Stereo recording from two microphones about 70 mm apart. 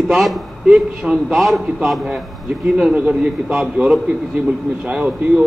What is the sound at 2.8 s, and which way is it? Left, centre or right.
A man's voice, centre.